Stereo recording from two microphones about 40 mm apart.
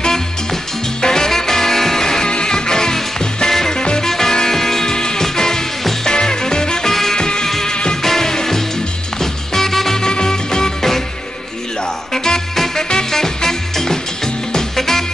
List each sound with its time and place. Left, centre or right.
0.0 s music: centre
6.9 s music: centre
7.2 s music: centre
7.4 s music: centre
7.7 s music: left
8.0 s music: centre
12.1 s music: centre